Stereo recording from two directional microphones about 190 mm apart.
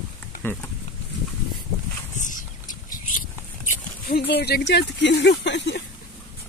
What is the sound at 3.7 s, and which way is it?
Speech, 50° left (ahead or behind).